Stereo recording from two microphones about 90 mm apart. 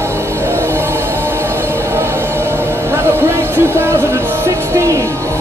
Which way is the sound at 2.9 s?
25° right (ahead or behind).